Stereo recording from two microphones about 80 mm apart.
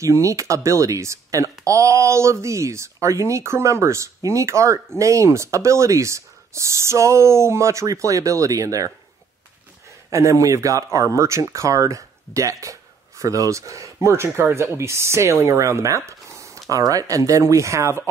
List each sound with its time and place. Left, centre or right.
0.0 s speech: right
10.0 s speech: right